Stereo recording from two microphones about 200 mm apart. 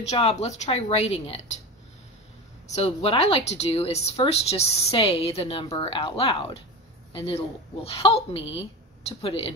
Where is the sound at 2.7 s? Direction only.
30° left (ahead or behind).